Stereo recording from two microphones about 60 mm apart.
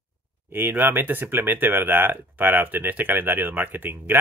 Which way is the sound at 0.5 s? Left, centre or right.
Right.